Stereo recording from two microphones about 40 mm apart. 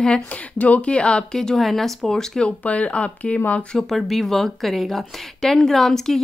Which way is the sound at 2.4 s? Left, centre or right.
Left.